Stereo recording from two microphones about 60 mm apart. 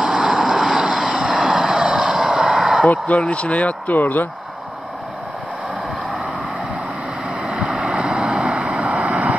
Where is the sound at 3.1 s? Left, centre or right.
Left.